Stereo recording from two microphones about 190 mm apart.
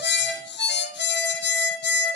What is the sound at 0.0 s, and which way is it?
Harmonica, 65° left (ahead or behind).